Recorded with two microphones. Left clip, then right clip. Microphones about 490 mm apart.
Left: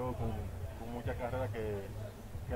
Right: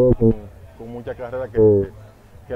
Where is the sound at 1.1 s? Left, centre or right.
Right.